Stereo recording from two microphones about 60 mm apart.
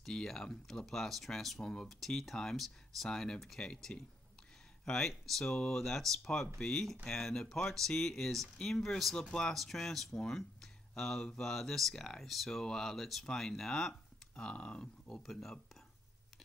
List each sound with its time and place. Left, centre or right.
0.0 s speech: centre
14.3 s speech: centre
15.0 s speech: centre